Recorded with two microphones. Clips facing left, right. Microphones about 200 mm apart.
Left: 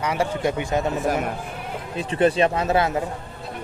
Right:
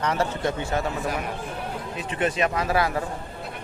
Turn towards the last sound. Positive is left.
turn(degrees=25)  # may be behind; listen again after turning